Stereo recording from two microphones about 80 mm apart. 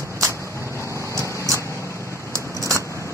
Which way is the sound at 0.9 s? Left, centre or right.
Right.